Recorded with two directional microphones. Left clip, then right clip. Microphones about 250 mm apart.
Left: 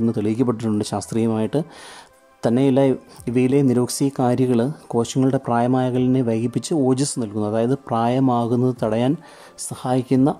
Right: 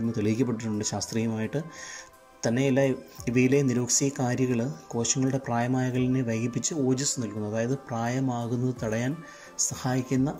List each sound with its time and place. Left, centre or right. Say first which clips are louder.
0.1 s speech: left 7 dB; centre